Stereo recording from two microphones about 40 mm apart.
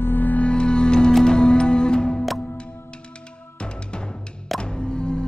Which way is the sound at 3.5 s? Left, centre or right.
Left.